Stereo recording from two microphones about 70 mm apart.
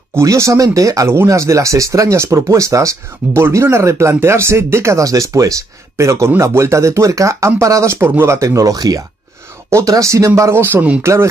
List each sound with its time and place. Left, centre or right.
0.2 s speech: right
3.4 s speech: right
9.7 s speech: right